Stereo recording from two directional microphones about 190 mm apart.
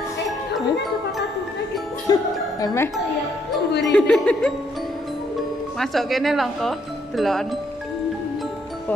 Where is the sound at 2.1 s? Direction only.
20° left (ahead or behind).